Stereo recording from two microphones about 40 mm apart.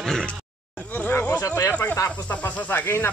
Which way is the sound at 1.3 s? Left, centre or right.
Left.